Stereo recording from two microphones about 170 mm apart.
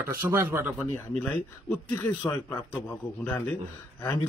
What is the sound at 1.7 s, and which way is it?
Speech, 10° left (ahead or behind).